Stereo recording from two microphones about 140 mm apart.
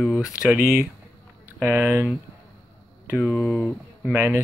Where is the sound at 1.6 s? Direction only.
15° right (ahead or behind).